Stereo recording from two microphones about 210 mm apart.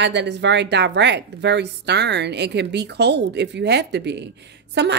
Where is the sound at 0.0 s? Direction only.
55° right (ahead or behind).